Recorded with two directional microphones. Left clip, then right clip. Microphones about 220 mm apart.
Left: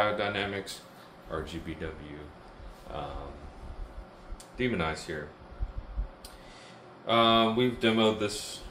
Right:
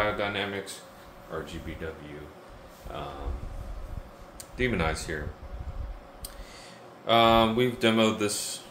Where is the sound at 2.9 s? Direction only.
Centre (ahead or behind).